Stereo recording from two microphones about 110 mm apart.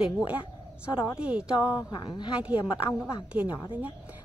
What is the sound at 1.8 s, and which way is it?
Speech, 40° left (ahead or behind).